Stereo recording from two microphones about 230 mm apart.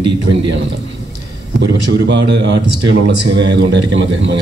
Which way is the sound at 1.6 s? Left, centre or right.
Right.